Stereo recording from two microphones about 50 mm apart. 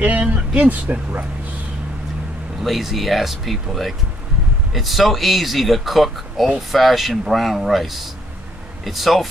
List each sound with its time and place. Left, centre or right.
0.0 s speech: right
2.6 s speech: centre